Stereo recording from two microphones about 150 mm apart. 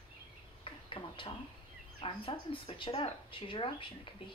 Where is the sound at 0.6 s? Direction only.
35° left (ahead or behind).